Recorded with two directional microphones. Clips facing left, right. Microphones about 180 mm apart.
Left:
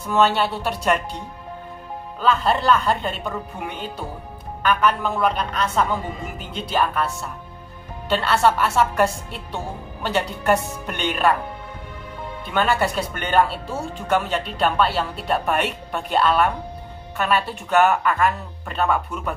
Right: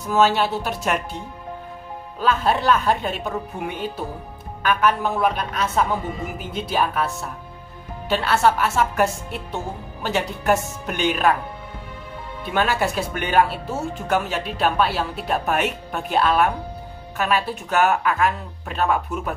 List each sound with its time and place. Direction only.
0.1 s speech: centre (ahead or behind)
2.1 s speech: 5° right (ahead or behind)
4.6 s speech: 5° right (ahead or behind)
8.1 s speech: centre (ahead or behind)
10.0 s speech: 5° right (ahead or behind)
12.5 s speech: 5° right (ahead or behind)